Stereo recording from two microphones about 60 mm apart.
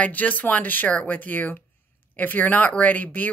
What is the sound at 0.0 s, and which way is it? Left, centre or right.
Speech, left.